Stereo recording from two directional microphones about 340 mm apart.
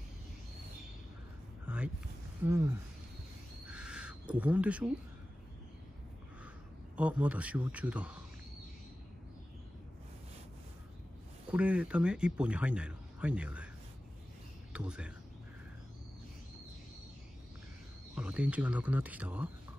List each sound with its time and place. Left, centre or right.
2.4 s speech: centre
3.6 s crow: centre
7.0 s speech: centre
11.5 s speech: centre
14.7 s speech: centre
18.1 s speech: centre